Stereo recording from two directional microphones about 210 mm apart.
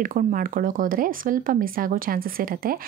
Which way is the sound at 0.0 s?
40° right (ahead or behind).